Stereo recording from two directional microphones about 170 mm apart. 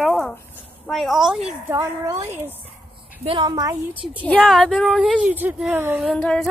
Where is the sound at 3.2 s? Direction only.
30° right (ahead or behind).